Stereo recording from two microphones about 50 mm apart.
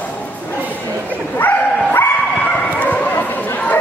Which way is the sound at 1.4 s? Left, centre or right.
Left.